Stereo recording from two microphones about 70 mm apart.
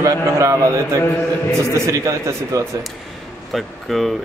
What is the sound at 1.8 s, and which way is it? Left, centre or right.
Speech, right.